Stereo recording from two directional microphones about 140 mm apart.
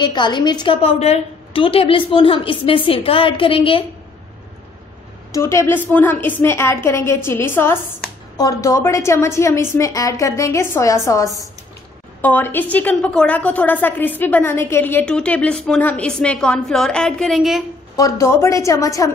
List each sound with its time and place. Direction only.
0.0 s a woman's voice: 35° left (ahead or behind)
0.8 s a woman's voice: 50° left (ahead or behind)
5.3 s a woman's voice: 20° left (ahead or behind)
12.2 s a woman's voice: 15° left (ahead or behind)
17.9 s a woman's voice: 25° left (ahead or behind)